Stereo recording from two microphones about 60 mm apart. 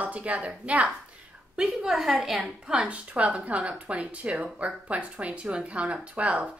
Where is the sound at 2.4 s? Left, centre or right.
Centre.